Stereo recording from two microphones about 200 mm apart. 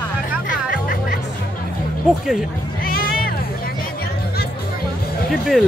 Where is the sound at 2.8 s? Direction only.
45° left (ahead or behind).